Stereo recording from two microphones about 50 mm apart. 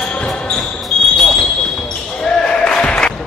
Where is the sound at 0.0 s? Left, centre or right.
Centre.